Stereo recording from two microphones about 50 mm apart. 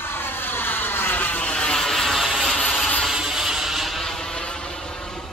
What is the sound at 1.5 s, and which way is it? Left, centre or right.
Vehicle, left.